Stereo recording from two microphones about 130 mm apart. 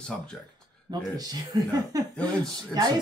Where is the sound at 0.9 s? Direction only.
30° right (ahead or behind).